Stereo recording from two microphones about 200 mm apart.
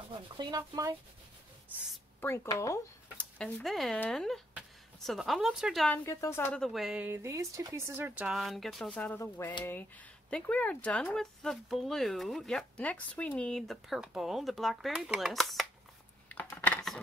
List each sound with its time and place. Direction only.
0.4 s speech: 20° right (ahead or behind)
2.1 s speech: 15° left (ahead or behind)
6.0 s speech: 15° left (ahead or behind)
16.3 s typing: 10° left (ahead or behind)